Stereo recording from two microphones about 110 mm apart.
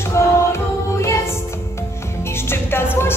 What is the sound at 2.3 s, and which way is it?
Music, 20° left (ahead or behind).